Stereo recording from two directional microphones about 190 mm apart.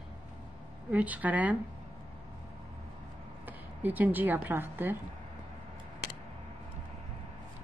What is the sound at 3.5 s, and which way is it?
Speech, 10° right (ahead or behind).